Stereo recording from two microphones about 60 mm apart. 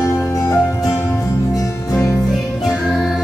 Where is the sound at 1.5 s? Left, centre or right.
Left.